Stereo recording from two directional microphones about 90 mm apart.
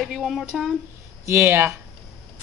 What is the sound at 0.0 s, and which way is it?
Speech, 5° right (ahead or behind).